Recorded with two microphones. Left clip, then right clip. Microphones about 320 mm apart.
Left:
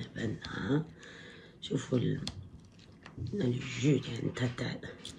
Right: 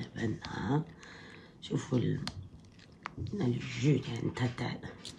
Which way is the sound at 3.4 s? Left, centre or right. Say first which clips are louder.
Left 1 dB; right.